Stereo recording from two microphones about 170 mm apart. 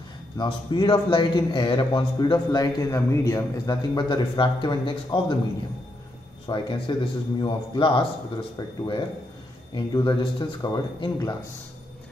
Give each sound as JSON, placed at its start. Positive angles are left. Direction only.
{"t": 0.4, "sound": "a man's voice", "side_deg": 25}
{"t": 6.4, "sound": "a man's voice", "side_deg": 30}